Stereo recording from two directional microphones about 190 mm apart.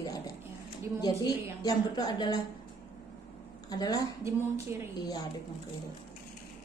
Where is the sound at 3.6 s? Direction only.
20° left (ahead or behind).